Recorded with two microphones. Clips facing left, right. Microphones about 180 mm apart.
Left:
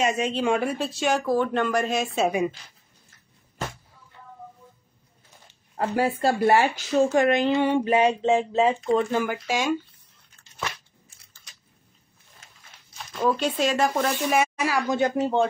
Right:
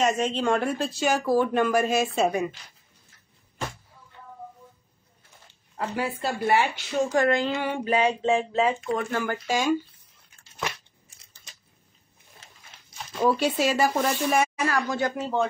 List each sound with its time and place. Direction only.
0.0 s speech: 10° left (ahead or behind)
5.8 s speech: 45° left (ahead or behind)
7.2 s speech: 20° left (ahead or behind)
9.5 s speech: centre (ahead or behind)
13.1 s speech: 5° right (ahead or behind)
14.9 s speech: 20° left (ahead or behind)